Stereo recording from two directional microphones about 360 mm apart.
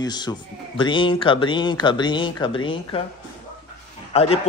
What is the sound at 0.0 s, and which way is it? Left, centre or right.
Speech, centre.